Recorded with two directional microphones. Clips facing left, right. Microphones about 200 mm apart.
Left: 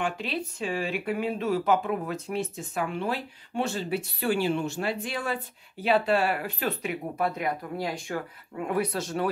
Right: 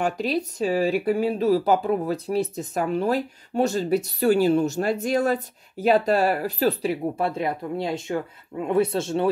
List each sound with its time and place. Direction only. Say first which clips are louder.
0.0 s speech: right 6 dB; 40° right (ahead or behind)